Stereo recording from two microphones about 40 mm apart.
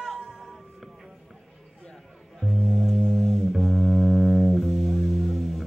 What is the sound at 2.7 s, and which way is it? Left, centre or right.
Music, centre.